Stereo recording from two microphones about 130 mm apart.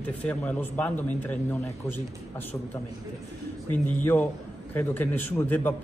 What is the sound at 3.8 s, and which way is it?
Speech, 10° left (ahead or behind).